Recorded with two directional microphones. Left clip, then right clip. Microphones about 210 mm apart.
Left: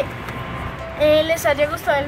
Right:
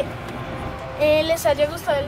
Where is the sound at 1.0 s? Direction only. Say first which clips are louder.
Left 2 dB; 25° right (ahead or behind).